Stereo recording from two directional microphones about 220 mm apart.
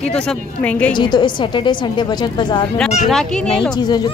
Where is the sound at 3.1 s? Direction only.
5° left (ahead or behind).